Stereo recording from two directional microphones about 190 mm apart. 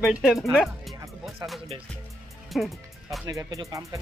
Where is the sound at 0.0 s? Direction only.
Centre (ahead or behind).